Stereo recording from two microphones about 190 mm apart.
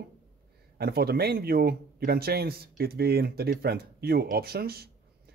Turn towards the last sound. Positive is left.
turn(degrees=-55)  # may be behind; listen again after turning